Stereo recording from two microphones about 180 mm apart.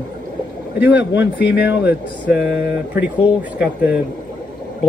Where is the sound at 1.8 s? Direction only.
10° right (ahead or behind).